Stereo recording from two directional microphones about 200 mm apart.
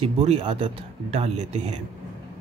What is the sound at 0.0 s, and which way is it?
Speech, 30° right (ahead or behind).